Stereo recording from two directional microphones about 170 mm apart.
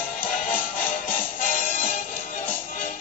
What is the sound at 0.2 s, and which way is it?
Music, 55° left (ahead or behind).